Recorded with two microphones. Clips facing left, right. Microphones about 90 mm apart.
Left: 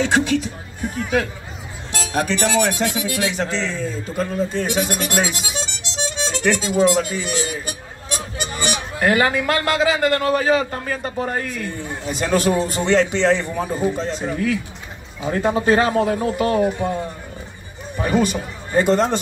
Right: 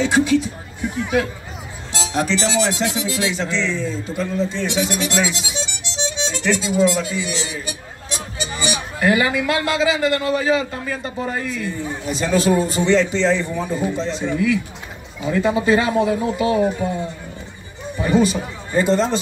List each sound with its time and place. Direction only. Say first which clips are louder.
0.0 s a sound: right 2 dB; 55° left (ahead or behind)
1.9 s a man's voice: right 1 dB; 50° left (ahead or behind)
17.9 s speech: right 2 dB; 55° left (ahead or behind)